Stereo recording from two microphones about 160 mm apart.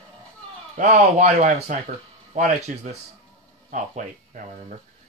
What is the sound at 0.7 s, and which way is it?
Speech, 45° right (ahead or behind).